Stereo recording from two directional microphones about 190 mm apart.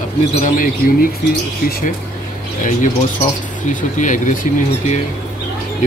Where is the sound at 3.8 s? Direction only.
40° left (ahead or behind).